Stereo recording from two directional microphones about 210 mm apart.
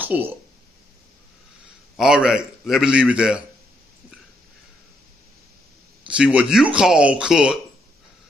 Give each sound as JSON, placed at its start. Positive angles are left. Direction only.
{"t": 0.0, "sound": "speech", "side_deg": -10}
{"t": 2.0, "sound": "a man's voice", "side_deg": -5}
{"t": 6.0, "sound": "a man's voice", "side_deg": -5}